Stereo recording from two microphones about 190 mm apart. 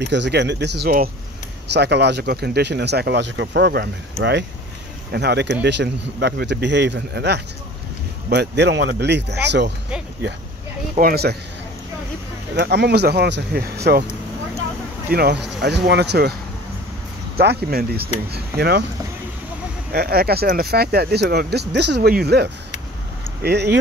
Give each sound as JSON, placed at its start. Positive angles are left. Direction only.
{"t": 0.0, "sound": "speech", "side_deg": -65}
{"t": 1.7, "sound": "speech", "side_deg": -60}
{"t": 11.0, "sound": "speech", "side_deg": -55}
{"t": 12.5, "sound": "speech", "side_deg": -60}
{"t": 15.0, "sound": "speech", "side_deg": -55}
{"t": 17.4, "sound": "speech", "side_deg": -55}
{"t": 19.9, "sound": "speech", "side_deg": -55}